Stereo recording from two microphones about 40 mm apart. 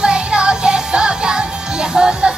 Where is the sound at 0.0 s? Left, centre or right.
Right.